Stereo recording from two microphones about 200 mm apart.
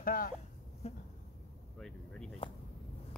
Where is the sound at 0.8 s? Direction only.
30° left (ahead or behind).